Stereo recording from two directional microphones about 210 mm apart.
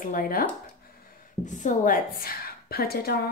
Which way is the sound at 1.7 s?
40° left (ahead or behind).